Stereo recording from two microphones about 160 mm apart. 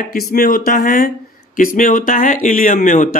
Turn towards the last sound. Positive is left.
turn(degrees=55)  # may be behind; listen again after turning